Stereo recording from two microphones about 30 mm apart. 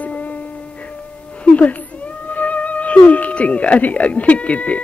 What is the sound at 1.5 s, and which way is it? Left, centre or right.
Cat, left.